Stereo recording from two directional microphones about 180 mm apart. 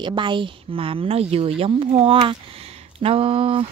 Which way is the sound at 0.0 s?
25° right (ahead or behind).